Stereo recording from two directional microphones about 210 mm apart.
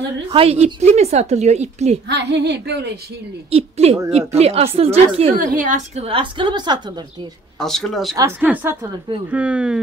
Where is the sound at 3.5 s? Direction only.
30° right (ahead or behind).